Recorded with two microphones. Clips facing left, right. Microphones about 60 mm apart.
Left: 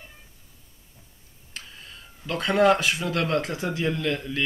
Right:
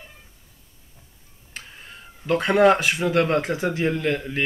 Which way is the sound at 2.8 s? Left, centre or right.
Right.